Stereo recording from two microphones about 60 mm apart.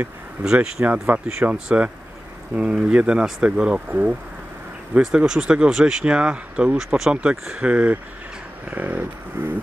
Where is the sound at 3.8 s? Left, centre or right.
Right.